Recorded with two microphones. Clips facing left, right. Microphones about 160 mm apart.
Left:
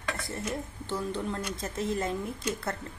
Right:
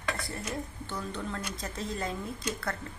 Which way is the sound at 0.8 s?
25° left (ahead or behind).